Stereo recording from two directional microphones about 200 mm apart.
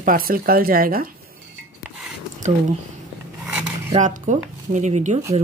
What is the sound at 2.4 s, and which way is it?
Speech, 35° right (ahead or behind).